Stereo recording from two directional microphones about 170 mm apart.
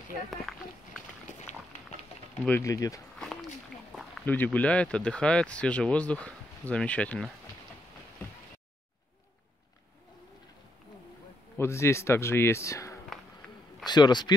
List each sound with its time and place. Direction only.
0.3 s speech: centre (ahead or behind)
2.4 s speech: 15° left (ahead or behind)
4.3 s speech: 10° left (ahead or behind)
11.5 s a man's voice: 15° left (ahead or behind)